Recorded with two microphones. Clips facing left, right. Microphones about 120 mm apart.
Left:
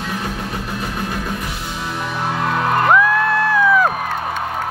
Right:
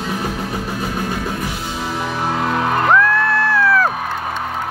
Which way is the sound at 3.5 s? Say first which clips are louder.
Left 2 dB; 15° left (ahead or behind).